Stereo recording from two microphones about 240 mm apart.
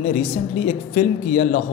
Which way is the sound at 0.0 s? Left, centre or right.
Left.